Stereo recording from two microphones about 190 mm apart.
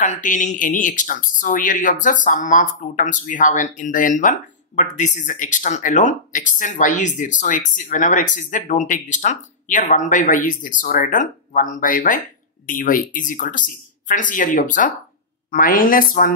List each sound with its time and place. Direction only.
0.0 s speech: 40° left (ahead or behind)